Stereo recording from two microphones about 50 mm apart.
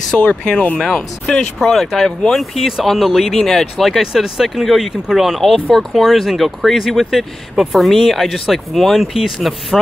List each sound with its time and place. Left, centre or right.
0.2 s speech: left
1.6 s speech: centre
3.3 s speech: centre
3.8 s speech: centre